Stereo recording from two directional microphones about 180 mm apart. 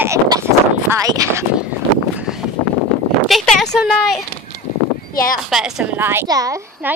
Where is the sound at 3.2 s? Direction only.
Centre (ahead or behind).